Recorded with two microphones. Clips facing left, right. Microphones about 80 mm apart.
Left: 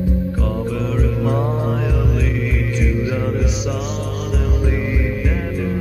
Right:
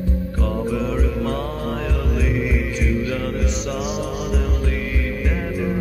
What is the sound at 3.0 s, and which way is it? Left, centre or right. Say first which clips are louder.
Music: left 2 dB; centre.